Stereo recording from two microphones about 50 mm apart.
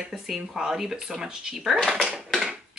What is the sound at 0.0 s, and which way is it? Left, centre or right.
Speech, centre.